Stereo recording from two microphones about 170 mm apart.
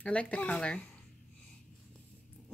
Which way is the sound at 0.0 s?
5° left (ahead or behind).